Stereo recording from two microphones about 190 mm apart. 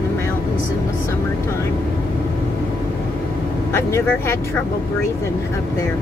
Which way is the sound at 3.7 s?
15° left (ahead or behind).